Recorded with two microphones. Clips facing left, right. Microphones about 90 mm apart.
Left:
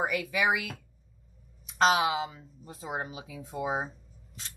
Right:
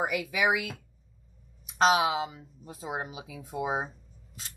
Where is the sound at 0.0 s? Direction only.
5° right (ahead or behind).